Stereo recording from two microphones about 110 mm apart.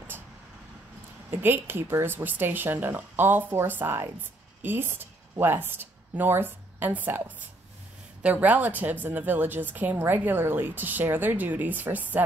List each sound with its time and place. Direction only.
1.3 s a woman's voice: 20° right (ahead or behind)